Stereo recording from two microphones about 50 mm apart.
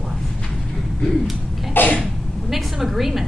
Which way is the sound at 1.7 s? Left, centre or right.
Left.